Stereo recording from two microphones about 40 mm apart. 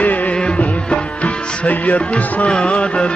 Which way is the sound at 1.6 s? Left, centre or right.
Left.